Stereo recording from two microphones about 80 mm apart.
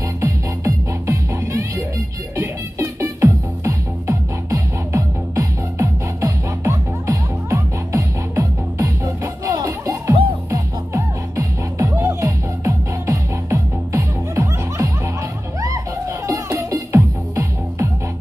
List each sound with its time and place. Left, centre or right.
0.2 s music: right